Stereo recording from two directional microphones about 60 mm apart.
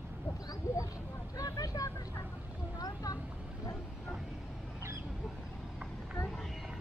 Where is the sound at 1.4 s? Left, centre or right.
Left.